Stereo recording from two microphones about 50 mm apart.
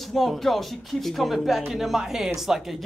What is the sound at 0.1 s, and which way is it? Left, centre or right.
Speech, centre.